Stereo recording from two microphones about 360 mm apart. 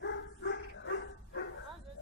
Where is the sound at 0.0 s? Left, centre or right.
Left.